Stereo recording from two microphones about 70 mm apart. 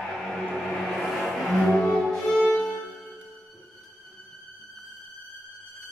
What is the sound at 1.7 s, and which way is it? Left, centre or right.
Music, centre.